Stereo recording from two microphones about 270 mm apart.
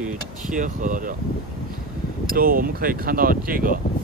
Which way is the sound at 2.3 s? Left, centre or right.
Right.